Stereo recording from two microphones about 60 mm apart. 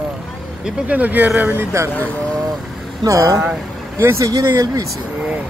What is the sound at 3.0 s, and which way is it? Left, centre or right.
Speech, right.